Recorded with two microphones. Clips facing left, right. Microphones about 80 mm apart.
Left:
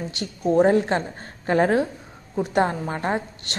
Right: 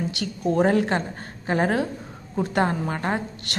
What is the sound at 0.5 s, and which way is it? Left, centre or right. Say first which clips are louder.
A woman's voice: left 2 dB; left.